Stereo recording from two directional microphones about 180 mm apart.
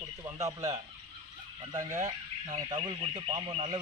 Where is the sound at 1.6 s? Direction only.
20° right (ahead or behind).